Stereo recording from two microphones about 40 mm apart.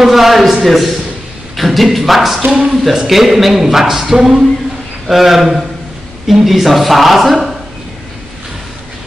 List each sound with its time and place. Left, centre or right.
0.0 s speech: centre
2.4 s speech: right
2.7 s speech: centre